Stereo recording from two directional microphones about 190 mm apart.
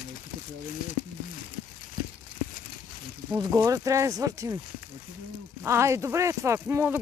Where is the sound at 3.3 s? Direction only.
20° right (ahead or behind).